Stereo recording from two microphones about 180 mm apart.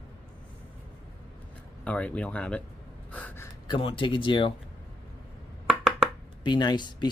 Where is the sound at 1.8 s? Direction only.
5° left (ahead or behind).